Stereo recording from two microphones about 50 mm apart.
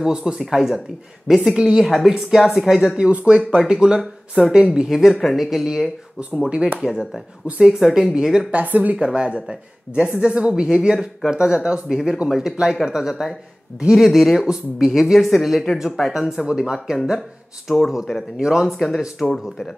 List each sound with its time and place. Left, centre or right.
0.0 s speech: centre
3.2 s speech: right
4.8 s speech: centre
6.1 s speech: right
7.4 s speech: right
8.5 s speech: right
9.0 s speech: centre
17.6 s speech: centre
18.4 s speech: centre
18.8 s speech: centre